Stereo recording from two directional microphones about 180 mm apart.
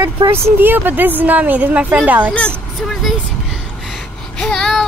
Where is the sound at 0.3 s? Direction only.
10° right (ahead or behind).